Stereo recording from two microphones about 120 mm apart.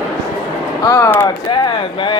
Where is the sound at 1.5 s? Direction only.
45° left (ahead or behind).